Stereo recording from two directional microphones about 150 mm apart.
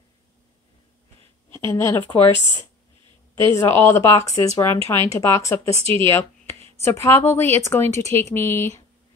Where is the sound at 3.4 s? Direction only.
15° left (ahead or behind).